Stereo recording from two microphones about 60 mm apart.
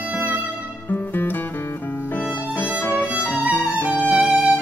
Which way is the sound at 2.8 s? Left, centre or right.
Left.